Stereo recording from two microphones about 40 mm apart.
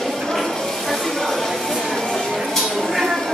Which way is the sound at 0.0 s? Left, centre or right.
Centre.